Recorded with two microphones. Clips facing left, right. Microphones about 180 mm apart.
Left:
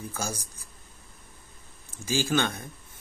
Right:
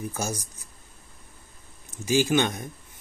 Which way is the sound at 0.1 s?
20° right (ahead or behind).